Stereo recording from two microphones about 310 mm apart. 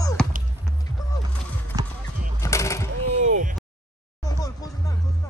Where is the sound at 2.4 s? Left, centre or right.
Centre.